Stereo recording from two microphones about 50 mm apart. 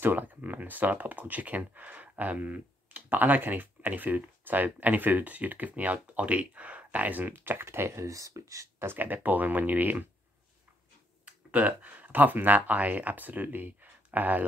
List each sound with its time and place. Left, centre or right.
0.0 s speech: right
7.6 s speech: right
8.8 s speech: right
11.2 s speech: right